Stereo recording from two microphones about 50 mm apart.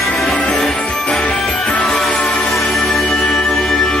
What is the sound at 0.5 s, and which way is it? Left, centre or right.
Music, centre.